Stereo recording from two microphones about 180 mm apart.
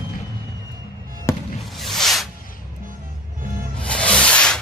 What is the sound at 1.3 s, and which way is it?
Fireworks, 15° left (ahead or behind).